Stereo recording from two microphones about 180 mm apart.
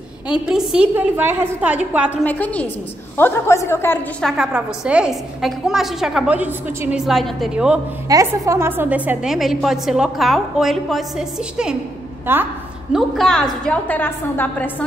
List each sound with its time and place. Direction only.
0.3 s a woman's voice: 5° right (ahead or behind)
2.2 s a woman's voice: 10° left (ahead or behind)
4.2 s a woman's voice: centre (ahead or behind)
8.1 s a woman's voice: 15° right (ahead or behind)
12.9 s a woman's voice: centre (ahead or behind)